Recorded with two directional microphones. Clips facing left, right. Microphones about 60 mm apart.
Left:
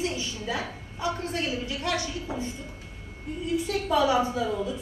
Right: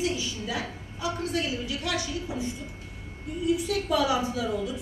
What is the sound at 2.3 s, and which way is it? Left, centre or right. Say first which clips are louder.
Speech: left 2 dB; left.